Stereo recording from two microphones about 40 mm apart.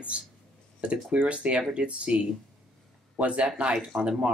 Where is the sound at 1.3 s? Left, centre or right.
Right.